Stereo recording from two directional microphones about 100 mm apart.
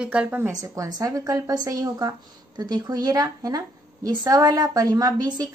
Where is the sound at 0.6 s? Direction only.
35° right (ahead or behind).